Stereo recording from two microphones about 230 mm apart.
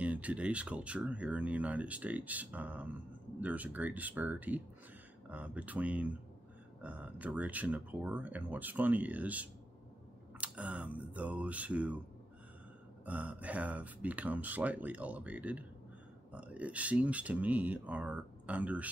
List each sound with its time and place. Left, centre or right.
0.0 s speech: centre
13.0 s speech: centre